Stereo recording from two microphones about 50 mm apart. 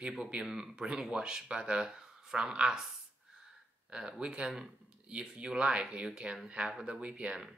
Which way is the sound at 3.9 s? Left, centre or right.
Centre.